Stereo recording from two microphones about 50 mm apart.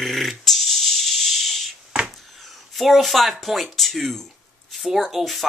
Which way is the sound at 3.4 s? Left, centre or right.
Centre.